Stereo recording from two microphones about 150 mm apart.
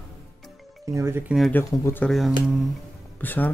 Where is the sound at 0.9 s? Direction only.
20° right (ahead or behind).